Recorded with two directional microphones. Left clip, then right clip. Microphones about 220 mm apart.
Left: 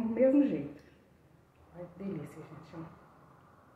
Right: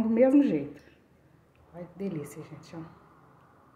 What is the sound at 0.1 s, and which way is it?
Speech, 50° right (ahead or behind).